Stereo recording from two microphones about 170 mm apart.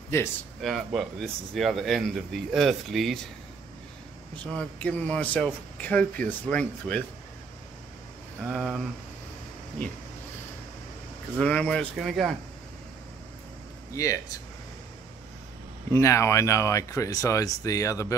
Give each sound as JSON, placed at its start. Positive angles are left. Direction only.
{"t": 0.6, "sound": "a man's voice", "side_deg": 0}
{"t": 4.5, "sound": "speech", "side_deg": 5}
{"t": 8.5, "sound": "a man's voice", "side_deg": 0}
{"t": 11.3, "sound": "a man's voice", "side_deg": 5}
{"t": 13.9, "sound": "speech", "side_deg": 20}
{"t": 15.9, "sound": "speech", "side_deg": 15}